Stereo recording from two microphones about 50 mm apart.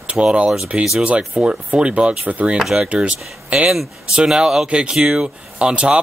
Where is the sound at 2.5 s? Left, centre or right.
Centre.